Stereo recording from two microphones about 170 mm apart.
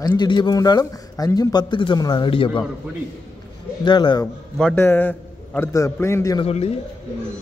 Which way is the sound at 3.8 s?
25° left (ahead or behind).